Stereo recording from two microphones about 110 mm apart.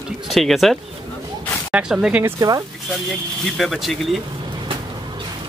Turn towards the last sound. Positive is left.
turn(degrees=0)  # may be behind; listen again after turning